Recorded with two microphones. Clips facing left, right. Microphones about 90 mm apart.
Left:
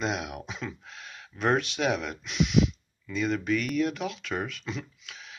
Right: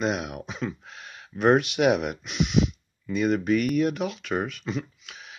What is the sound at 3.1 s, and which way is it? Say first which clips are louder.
Speech: right 5 dB; 50° right (ahead or behind).